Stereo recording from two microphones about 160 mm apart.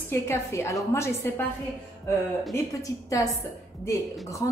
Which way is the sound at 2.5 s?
20° left (ahead or behind).